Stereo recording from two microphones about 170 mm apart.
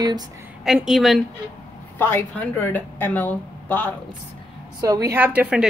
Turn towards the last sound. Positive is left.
turn(degrees=-5)  # may be behind; listen again after turning